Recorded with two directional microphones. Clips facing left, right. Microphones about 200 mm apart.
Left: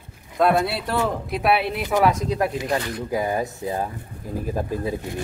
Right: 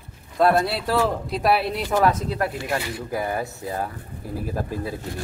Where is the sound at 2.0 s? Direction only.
15° left (ahead or behind).